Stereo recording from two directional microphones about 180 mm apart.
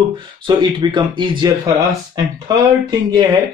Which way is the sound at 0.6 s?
25° right (ahead or behind).